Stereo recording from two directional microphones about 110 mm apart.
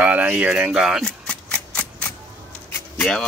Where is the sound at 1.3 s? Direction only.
10° left (ahead or behind).